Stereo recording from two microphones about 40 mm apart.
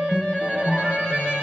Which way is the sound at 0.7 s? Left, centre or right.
Right.